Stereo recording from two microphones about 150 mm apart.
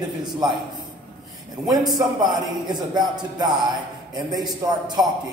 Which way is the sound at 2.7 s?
25° right (ahead or behind).